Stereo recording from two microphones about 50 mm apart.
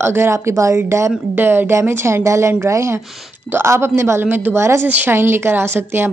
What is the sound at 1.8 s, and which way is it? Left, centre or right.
A woman's voice, right.